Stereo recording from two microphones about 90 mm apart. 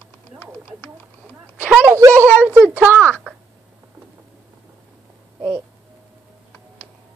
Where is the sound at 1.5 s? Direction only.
20° right (ahead or behind).